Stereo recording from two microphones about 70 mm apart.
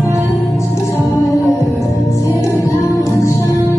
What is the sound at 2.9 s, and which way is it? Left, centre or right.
Music, left.